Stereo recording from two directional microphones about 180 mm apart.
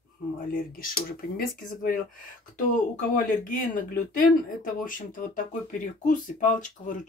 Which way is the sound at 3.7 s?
50° left (ahead or behind).